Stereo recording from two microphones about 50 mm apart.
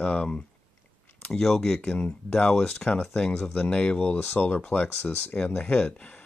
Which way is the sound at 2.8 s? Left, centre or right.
Left.